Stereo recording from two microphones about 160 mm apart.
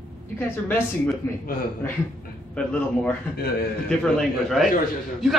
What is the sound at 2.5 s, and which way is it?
A man's voice, 5° left (ahead or behind).